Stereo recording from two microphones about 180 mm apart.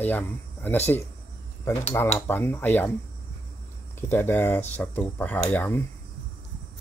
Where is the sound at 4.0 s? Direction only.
15° left (ahead or behind).